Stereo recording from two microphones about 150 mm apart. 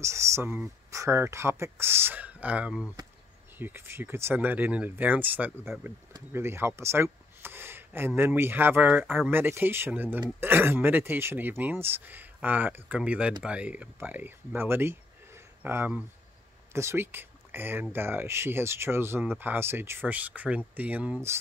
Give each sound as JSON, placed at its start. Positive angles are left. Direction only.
{"t": 0.0, "sound": "speech", "side_deg": -20}